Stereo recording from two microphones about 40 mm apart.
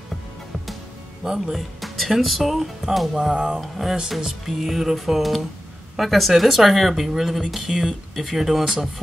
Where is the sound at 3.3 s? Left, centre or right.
Right.